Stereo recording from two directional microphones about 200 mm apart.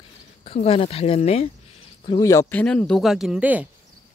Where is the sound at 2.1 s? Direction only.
15° left (ahead or behind); by 3.7 s 5° right (ahead or behind).